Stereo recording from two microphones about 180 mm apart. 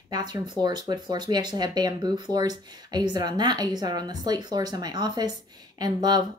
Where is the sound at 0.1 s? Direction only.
25° right (ahead or behind).